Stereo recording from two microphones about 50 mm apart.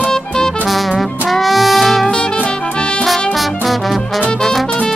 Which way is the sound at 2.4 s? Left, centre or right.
Left.